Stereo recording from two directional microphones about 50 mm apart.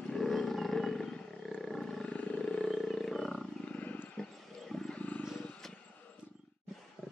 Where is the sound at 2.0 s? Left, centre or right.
Left.